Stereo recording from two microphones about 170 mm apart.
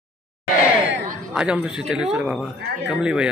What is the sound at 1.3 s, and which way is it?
A man's voice, 5° right (ahead or behind).